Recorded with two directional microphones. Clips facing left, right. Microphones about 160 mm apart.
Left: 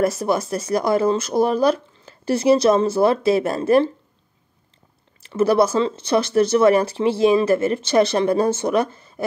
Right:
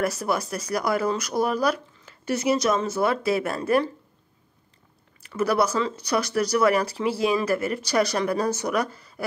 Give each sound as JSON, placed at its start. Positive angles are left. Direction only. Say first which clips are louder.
{"t": 0.0, "sound": "speech", "louder": "left 5 dB", "side_deg": 25}
{"t": 5.2, "sound": "speech", "louder": "left 6 dB", "side_deg": 25}